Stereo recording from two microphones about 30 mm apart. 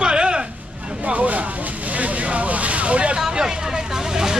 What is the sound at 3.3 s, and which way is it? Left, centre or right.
Speech, right.